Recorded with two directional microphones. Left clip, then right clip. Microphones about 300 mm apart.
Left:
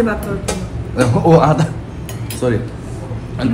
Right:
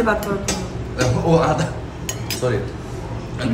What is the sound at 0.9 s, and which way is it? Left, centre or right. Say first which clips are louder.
Speech: left 6 dB; centre.